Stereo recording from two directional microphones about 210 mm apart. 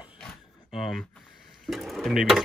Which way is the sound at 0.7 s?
Centre (ahead or behind).